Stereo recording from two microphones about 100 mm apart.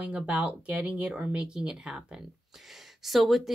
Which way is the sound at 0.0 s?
15° right (ahead or behind).